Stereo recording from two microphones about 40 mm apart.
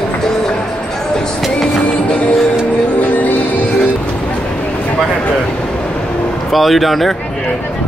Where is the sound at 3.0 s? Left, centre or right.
Left.